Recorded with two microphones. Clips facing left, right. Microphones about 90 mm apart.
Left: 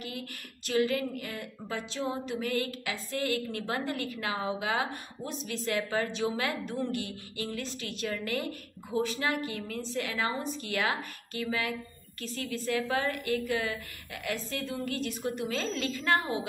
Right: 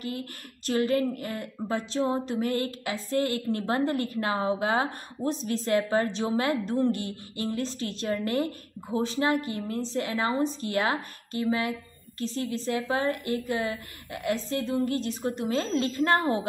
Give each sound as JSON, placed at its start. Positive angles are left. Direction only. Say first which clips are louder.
{"t": 0.7, "sound": "a woman's voice", "louder": "right 3 dB", "side_deg": -35}